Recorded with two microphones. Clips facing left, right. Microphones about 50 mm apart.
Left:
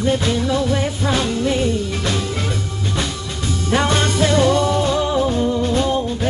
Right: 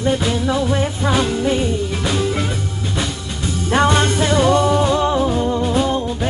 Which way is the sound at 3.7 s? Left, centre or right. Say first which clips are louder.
Right 3 dB; centre.